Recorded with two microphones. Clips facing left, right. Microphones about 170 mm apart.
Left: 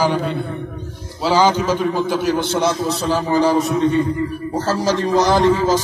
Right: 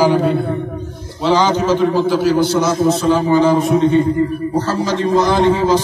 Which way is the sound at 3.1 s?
35° left (ahead or behind).